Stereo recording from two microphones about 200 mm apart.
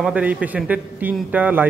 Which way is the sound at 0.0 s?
5° right (ahead or behind).